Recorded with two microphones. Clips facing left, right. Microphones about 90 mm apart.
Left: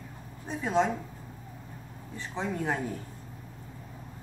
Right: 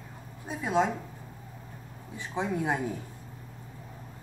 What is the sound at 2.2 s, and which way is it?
Speech, 10° right (ahead or behind).